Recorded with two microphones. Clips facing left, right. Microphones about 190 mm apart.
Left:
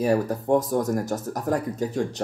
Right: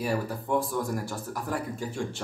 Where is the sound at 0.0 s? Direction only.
45° left (ahead or behind).